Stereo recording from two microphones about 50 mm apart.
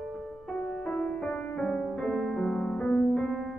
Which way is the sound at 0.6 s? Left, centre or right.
Left.